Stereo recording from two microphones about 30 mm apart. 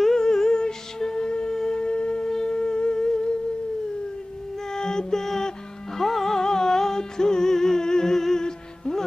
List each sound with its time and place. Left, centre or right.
0.1 s music: centre
1.5 s a sound: centre
1.8 s wind instrument: left
2.2 s humming: centre
4.6 s music: left